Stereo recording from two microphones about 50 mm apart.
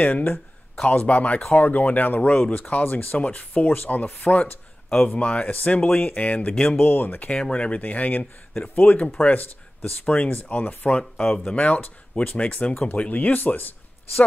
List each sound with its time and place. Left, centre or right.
0.0 s speech: left
3.2 s speech: left
6.5 s speech: centre
6.8 s speech: left
7.2 s speech: centre
7.6 s speech: left
10.9 s speech: centre